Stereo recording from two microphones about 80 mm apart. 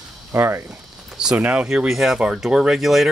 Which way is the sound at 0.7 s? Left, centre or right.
Centre.